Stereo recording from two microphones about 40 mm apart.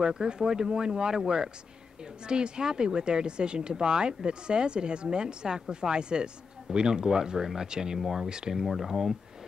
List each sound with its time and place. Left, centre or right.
0.0 s speech: right
8.6 s speech: centre